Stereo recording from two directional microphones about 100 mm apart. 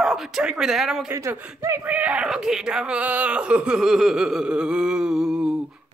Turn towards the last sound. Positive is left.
turn(degrees=-5)  # may be behind; listen again after turning